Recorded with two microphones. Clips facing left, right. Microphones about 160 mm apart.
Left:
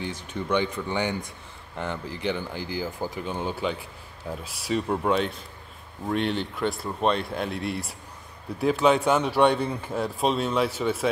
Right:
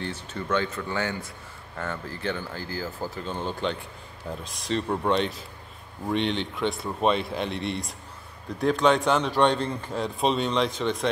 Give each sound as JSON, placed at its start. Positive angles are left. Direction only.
{"t": 0.0, "sound": "a man's voice", "side_deg": 15}